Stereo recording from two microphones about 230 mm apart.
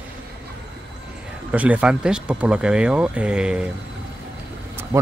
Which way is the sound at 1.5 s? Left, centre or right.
Centre.